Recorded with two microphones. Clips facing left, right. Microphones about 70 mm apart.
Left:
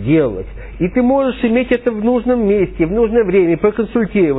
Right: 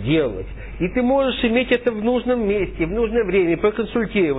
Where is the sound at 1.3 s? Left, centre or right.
Left.